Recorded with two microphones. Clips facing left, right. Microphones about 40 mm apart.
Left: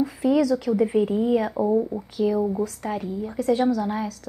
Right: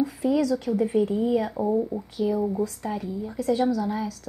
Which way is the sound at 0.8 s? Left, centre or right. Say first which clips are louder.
Even; left.